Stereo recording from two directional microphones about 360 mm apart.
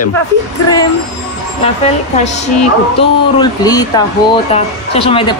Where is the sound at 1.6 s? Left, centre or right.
Centre.